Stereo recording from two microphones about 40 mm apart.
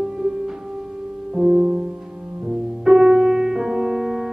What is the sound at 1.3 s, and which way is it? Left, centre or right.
Music, right.